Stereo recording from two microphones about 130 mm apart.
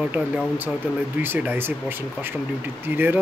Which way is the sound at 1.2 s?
15° right (ahead or behind).